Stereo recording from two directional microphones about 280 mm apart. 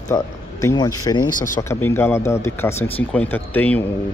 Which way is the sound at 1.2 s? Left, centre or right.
Left.